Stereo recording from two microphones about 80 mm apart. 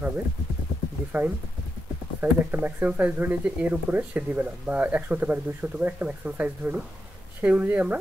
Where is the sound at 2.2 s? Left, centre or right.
Right.